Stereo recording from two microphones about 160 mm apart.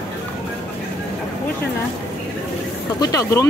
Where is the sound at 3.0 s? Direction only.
20° left (ahead or behind).